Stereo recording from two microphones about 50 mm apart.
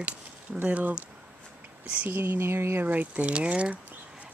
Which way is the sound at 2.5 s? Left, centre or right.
Right.